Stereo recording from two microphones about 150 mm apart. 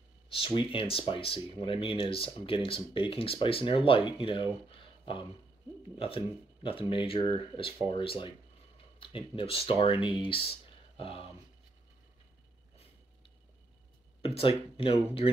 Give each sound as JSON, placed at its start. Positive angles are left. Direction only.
{"t": 0.3, "sound": "speech", "side_deg": 35}
{"t": 14.2, "sound": "speech", "side_deg": 40}